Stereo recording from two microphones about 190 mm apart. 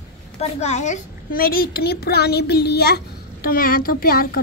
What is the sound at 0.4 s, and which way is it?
A child's voice, 35° left (ahead or behind).